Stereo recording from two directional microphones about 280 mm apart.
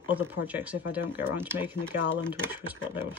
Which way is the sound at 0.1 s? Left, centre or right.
Centre.